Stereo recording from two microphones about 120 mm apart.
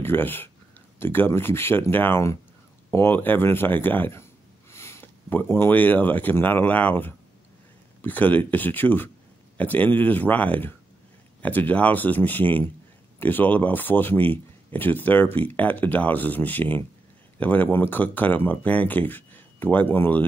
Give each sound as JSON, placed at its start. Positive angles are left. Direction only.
{"t": 0.0, "sound": "speech", "side_deg": 20}